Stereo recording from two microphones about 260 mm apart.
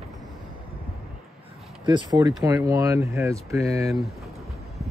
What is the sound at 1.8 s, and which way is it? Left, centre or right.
Speech, centre.